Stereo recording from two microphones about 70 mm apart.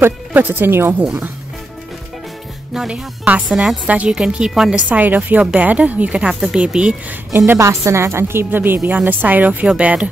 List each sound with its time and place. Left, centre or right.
0.0 s a woman's voice: right
2.7 s speech: centre
3.8 s speech: centre
4.9 s speech: right
7.5 s a woman's voice: right; by 10.0 s centre